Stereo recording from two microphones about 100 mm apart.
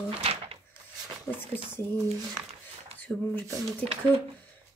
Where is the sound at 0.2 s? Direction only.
80° right.